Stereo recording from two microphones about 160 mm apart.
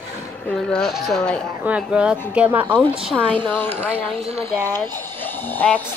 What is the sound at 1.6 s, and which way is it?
Speech, 5° right (ahead or behind).